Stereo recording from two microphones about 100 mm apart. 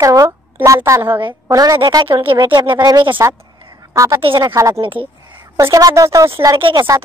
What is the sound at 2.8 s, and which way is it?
A woman's voice, 40° right (ahead or behind).